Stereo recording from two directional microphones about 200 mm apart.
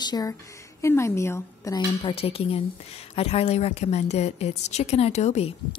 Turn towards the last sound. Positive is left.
turn(degrees=30)  # may be behind; listen again after turning